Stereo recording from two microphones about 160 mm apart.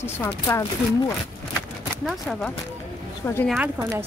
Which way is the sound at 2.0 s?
Centre (ahead or behind).